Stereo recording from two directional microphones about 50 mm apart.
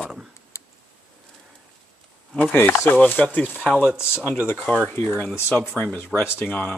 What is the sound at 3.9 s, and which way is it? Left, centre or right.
Speech, centre.